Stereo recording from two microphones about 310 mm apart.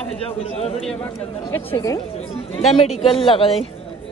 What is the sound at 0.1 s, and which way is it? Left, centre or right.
A man's voice, centre.